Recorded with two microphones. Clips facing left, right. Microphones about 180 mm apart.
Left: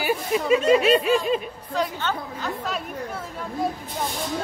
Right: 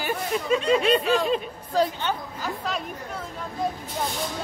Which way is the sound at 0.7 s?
5° left (ahead or behind).